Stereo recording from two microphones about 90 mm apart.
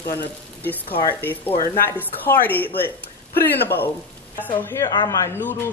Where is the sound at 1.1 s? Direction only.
20° left (ahead or behind).